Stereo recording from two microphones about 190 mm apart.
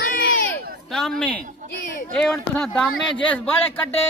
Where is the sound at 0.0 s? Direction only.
50° left (ahead or behind).